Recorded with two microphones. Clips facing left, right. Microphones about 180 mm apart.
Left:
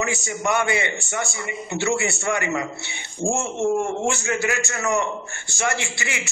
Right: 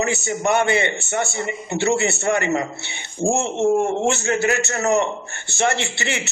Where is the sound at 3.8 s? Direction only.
40° right (ahead or behind).